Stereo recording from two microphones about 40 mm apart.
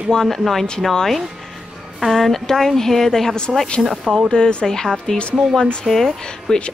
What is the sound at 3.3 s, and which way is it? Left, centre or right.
A woman's voice, left.